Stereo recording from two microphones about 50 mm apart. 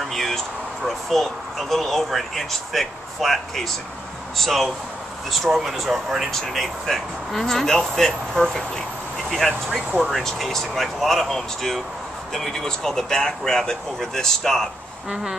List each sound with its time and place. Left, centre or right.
0.1 s speech: centre
10.1 s speech: centre